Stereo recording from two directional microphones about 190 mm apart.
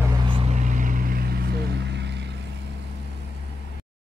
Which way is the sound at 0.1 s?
25° right (ahead or behind).